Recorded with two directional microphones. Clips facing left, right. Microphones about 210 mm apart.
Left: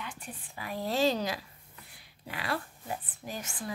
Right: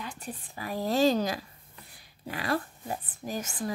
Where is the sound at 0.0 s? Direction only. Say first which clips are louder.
Right 4 dB; 40° right (ahead or behind).